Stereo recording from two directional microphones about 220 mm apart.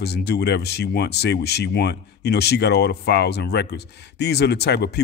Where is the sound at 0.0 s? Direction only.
50° left (ahead or behind).